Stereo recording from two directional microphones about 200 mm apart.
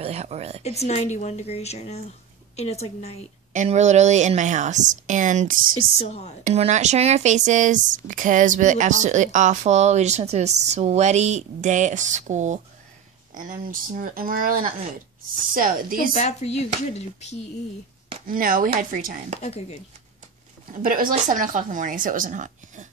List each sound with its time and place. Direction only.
0.0 s a sound: 35° right (ahead or behind)
0.7 s speech: 30° left (ahead or behind)
3.5 s speech: 35° right (ahead or behind)
5.9 s speech: 30° left (ahead or behind)
6.4 s speech: 35° right (ahead or behind)
16.2 s speech: 35° left (ahead or behind)
18.2 s speech: 45° right (ahead or behind)
19.4 s speech: 35° left (ahead or behind)
20.6 s speech: 45° right (ahead or behind)